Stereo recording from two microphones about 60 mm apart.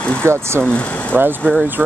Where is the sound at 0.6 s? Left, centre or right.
Left.